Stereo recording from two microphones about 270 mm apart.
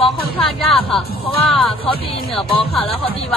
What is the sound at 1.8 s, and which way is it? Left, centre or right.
Speech, centre.